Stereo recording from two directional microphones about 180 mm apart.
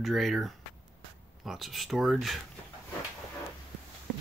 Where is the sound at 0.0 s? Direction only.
Centre (ahead or behind).